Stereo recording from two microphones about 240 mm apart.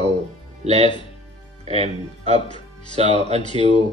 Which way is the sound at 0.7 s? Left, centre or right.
Centre.